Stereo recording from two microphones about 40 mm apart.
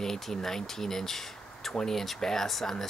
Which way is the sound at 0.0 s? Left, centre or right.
Centre.